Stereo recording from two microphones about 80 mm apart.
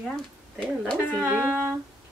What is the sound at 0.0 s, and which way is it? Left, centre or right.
Speech, centre.